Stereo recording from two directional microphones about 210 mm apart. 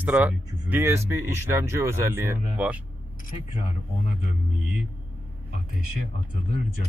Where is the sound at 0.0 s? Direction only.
5° right (ahead or behind).